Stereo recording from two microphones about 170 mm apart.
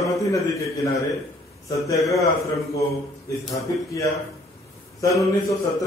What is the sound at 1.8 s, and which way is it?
Speech, 20° left (ahead or behind).